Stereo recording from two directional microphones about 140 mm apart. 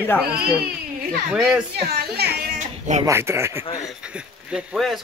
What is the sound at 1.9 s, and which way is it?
Speech, 90° right.